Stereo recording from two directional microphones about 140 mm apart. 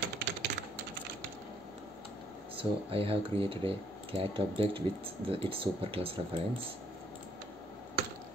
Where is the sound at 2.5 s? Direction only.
40° right (ahead or behind).